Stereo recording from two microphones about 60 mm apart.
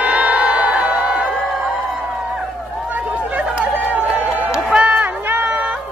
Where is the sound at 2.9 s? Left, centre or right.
Right.